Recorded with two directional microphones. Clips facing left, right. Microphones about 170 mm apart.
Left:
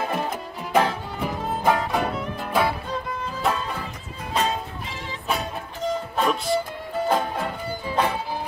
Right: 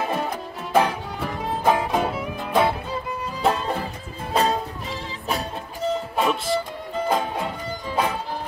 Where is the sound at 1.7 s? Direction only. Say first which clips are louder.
Right 1 dB; 15° right (ahead or behind).